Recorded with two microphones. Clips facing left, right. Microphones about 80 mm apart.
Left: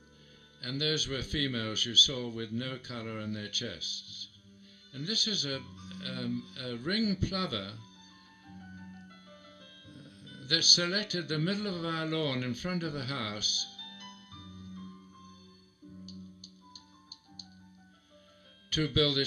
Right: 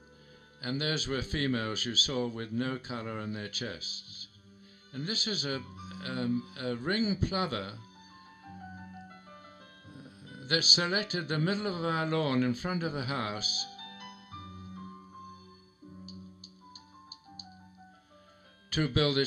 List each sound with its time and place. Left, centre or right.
0.6 s speech: right
8.5 s music: right
18.7 s speech: right